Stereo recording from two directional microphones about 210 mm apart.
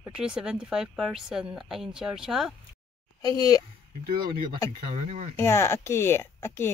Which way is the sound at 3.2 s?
20° left (ahead or behind).